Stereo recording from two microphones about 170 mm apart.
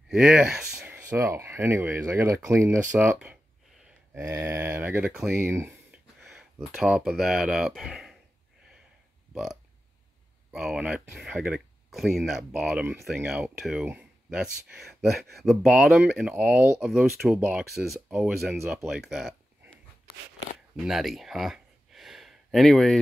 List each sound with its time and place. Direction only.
0.1 s speech: 5° right (ahead or behind)
6.2 s speech: centre (ahead or behind)
9.3 s burping: centre (ahead or behind)
10.5 s speech: 5° right (ahead or behind)
18.6 s speech: 15° right (ahead or behind)
18.9 s speech: 5° right (ahead or behind)
20.7 s a sound: centre (ahead or behind)